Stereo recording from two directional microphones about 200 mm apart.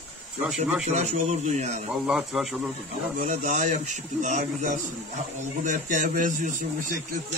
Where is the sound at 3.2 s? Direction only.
35° right (ahead or behind).